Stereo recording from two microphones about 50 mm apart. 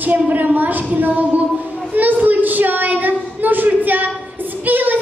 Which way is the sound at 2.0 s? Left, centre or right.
Right.